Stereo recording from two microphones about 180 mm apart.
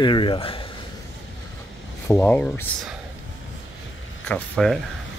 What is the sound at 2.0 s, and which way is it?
Speech, 15° left (ahead or behind).